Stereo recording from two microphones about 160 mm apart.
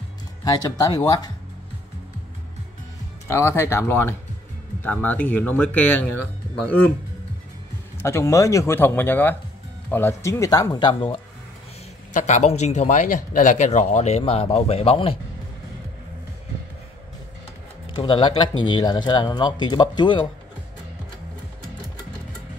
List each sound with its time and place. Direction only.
0.4 s speech: 20° left (ahead or behind)
3.3 s speech: 15° left (ahead or behind)
8.0 s speech: 15° left (ahead or behind)
12.1 s speech: 50° left (ahead or behind)
17.8 s speech: 30° left (ahead or behind)